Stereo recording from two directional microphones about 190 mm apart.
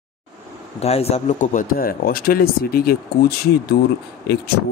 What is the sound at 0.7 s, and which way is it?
A man's voice, 35° left (ahead or behind).